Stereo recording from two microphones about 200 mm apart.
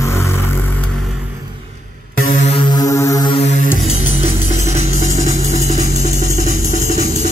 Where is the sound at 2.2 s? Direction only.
30° left (ahead or behind).